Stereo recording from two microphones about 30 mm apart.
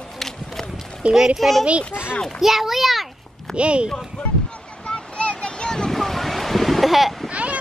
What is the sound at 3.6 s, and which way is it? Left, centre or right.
Speech, right.